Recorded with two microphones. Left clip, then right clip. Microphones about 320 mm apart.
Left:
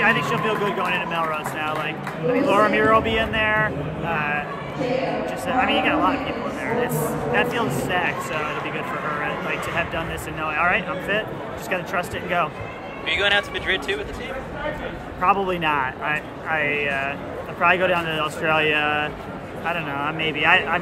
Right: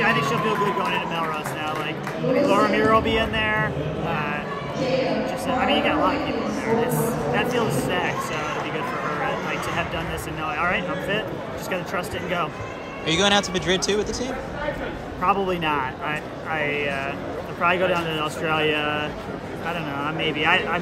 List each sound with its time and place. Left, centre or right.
0.0 s speech: centre
5.5 s speech: centre
10.4 s speech: centre
13.0 s speech: right
15.2 s speech: centre